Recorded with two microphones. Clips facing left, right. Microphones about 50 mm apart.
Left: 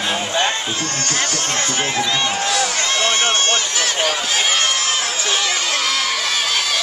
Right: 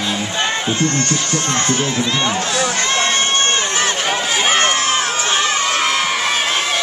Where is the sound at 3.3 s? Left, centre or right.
Right.